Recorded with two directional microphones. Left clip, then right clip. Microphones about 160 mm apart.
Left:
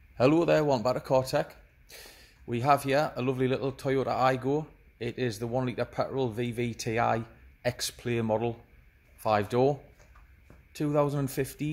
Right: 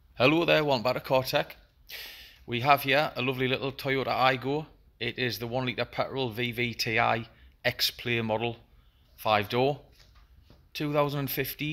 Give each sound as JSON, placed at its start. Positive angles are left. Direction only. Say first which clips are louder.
{"t": 0.1, "sound": "speech", "louder": "even", "side_deg": 5}